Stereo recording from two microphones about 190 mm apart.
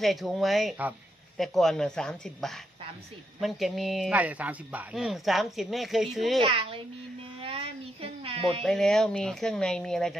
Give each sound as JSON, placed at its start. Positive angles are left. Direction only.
{"t": 0.0, "sound": "a man's voice", "side_deg": 0}
{"t": 6.4, "sound": "a child's voice", "side_deg": -30}
{"t": 7.4, "sound": "a sound", "side_deg": -30}
{"t": 8.6, "sound": "a man's voice", "side_deg": 5}